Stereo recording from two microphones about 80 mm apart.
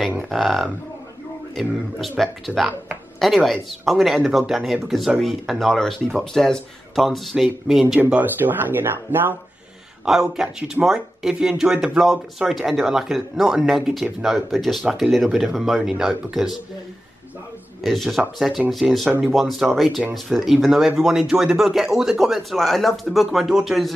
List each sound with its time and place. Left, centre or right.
0.3 s speech: centre
8.1 s speech: right
10.3 s speech: centre
17.8 s speech: centre